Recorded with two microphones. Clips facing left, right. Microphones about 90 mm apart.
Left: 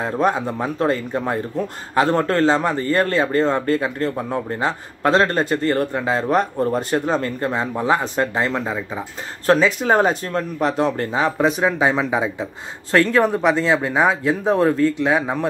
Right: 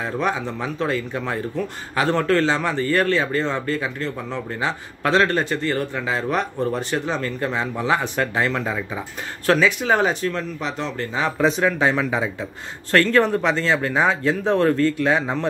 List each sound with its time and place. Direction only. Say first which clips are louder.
0.0 s speech: left 4 dB; 40° left (ahead or behind)
8.6 s speech: left 1 dB; 10° left (ahead or behind)
9.5 s speech: left 2 dB; 35° left (ahead or behind)
11.4 s speech: right 1 dB; 10° left (ahead or behind)